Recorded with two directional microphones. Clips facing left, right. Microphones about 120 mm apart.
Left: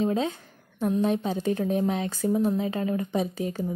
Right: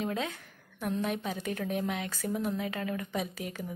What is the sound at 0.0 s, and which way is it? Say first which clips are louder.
A woman's voice: left 8 dB; 30° left (ahead or behind).